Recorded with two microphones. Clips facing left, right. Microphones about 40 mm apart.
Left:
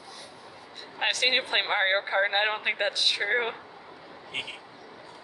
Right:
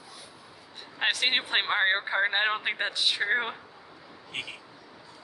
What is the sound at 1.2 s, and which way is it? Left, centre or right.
Speech, centre.